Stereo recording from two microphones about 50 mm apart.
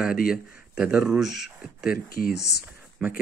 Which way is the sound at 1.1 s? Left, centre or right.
Centre.